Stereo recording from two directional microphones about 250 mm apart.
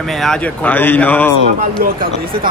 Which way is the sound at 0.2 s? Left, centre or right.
Centre.